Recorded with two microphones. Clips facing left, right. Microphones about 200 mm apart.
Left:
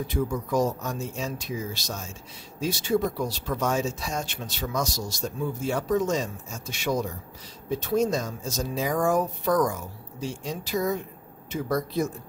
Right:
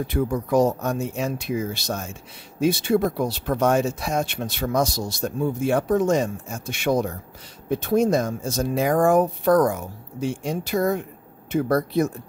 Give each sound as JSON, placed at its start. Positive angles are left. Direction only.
{"t": 0.0, "sound": "speech", "side_deg": -60}